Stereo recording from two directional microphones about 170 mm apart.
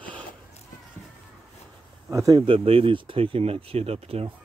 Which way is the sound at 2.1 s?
20° right (ahead or behind).